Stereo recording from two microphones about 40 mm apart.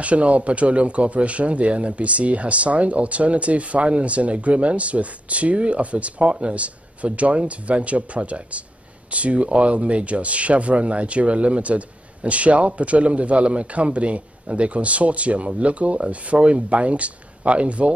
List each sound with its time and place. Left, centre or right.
0.0 s speech: right